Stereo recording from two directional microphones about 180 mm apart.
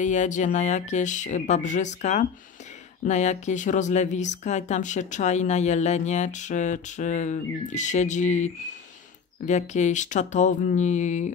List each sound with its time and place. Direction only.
0.0 s speech: 45° left (ahead or behind)
9.5 s speech: 40° left (ahead or behind)